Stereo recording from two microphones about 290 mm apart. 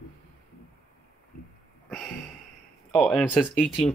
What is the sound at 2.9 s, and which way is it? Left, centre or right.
Speech, centre.